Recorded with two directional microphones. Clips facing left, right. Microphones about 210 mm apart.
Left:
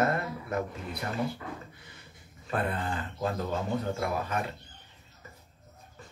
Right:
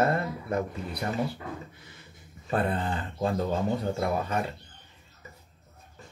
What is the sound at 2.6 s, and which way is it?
Speech, 30° right (ahead or behind).